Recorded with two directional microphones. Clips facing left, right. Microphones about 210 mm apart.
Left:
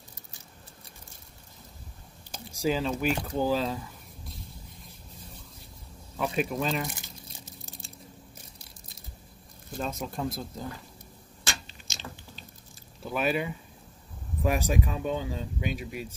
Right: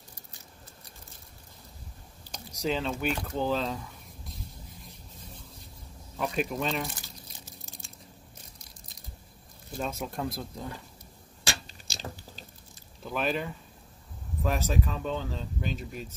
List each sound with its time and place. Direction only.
2.3 s speech: 5° left (ahead or behind)
6.1 s speech: centre (ahead or behind)
9.8 s speech: 5° right (ahead or behind)
11.6 s biting: 40° right (ahead or behind)
13.0 s speech: 5° left (ahead or behind)